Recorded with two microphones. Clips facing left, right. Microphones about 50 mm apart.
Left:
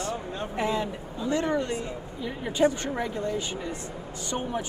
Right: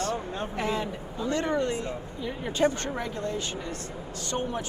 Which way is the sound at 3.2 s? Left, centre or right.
Centre.